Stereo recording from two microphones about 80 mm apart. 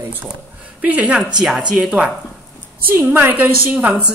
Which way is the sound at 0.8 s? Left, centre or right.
Centre.